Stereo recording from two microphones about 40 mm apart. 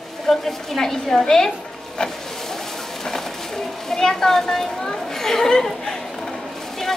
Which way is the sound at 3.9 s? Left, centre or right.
Centre.